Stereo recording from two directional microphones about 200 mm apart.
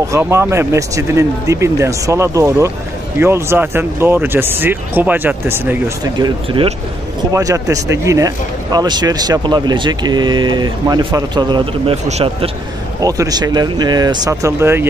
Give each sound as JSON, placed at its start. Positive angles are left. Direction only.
{"t": 0.1, "sound": "speech", "side_deg": -15}
{"t": 6.2, "sound": "speech", "side_deg": -25}
{"t": 13.0, "sound": "speech", "side_deg": -20}